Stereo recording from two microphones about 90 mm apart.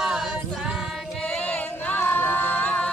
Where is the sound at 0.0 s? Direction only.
5° right (ahead or behind).